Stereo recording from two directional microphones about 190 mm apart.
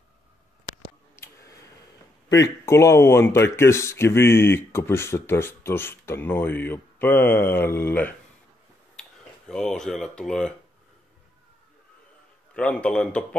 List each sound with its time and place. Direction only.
1.1 s a sound: 15° left (ahead or behind)
2.4 s speech: 15° left (ahead or behind)
9.5 s speech: 5° left (ahead or behind)
12.5 s speech: 5° left (ahead or behind)